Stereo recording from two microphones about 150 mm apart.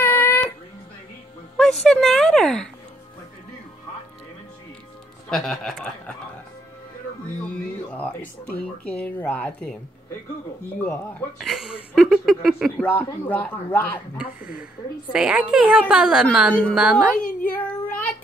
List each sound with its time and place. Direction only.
0.0 s a sound: 15° left (ahead or behind)
1.6 s speech: centre (ahead or behind)
5.3 s speech: centre (ahead or behind)
7.9 s speech: 10° left (ahead or behind)
10.8 s speech: 10° left (ahead or behind)
11.3 s speech: centre (ahead or behind)
12.8 s speech: 10° left (ahead or behind)
14.4 s speech: 75° left (ahead or behind)
15.1 s speech: 5° right (ahead or behind)
17.5 s speech: 10° left (ahead or behind)